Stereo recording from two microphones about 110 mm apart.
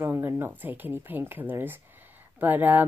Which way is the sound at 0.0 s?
20° right (ahead or behind).